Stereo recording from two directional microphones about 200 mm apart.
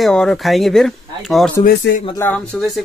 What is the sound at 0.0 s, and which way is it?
Speech, 5° left (ahead or behind).